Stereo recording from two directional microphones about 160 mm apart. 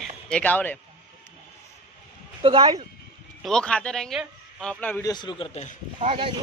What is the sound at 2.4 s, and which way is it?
Speech, 30° right (ahead or behind).